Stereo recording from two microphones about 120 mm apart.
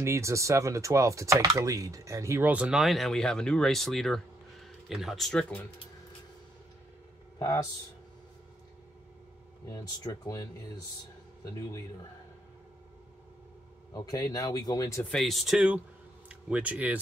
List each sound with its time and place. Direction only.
0.0 s speech: 25° right (ahead or behind)
2.4 s speech: 10° right (ahead or behind); by 5.7 s 10° left (ahead or behind)
7.3 s speech: 25° left (ahead or behind)
9.7 s speech: 35° left (ahead or behind)
13.9 s speech: 30° left (ahead or behind)
15.0 s speech: centre (ahead or behind)